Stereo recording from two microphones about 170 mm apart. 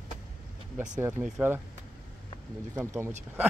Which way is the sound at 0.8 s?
15° right (ahead or behind).